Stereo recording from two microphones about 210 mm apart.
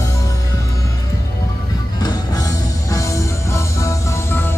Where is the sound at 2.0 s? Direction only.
20° left (ahead or behind).